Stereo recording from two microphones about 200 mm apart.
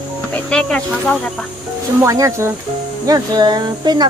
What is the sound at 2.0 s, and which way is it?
Speech, 15° right (ahead or behind).